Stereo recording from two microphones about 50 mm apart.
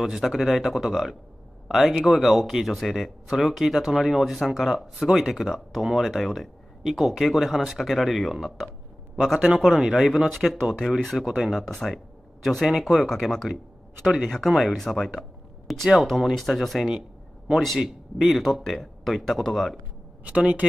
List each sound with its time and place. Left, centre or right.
0.0 s speech: centre
20.2 s speech: right